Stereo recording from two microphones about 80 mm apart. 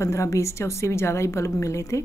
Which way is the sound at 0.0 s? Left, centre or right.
Left.